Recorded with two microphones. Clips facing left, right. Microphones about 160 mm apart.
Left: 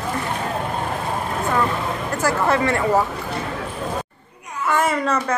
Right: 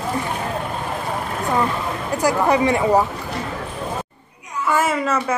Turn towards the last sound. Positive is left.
turn(degrees=-5)  # may be behind; listen again after turning